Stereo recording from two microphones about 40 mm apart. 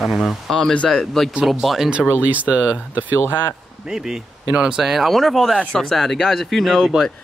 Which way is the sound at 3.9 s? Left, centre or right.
Centre.